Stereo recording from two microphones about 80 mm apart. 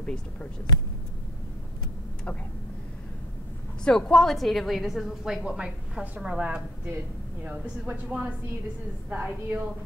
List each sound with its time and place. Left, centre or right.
0.0 s speech: centre
3.8 s a woman's voice: centre; by 9.6 s right